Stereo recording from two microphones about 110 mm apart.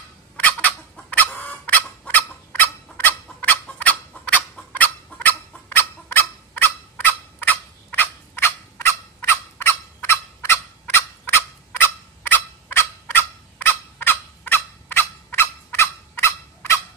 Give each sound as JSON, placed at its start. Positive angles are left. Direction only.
{"t": 0.4, "sound": "fowl", "side_deg": 15}